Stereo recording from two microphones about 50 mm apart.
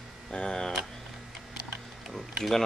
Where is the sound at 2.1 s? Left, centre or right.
Centre.